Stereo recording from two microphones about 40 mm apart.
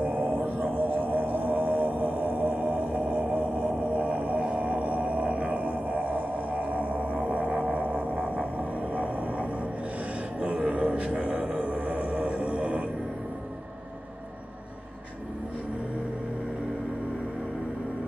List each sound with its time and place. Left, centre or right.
0.0 s music: right